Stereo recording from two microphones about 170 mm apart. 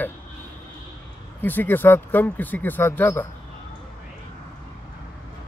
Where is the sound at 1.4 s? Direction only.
10° left (ahead or behind).